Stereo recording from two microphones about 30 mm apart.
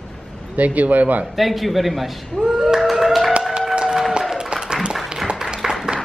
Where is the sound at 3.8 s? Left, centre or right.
Right.